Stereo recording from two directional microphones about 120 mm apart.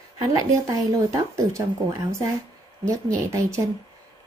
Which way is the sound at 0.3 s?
25° right (ahead or behind).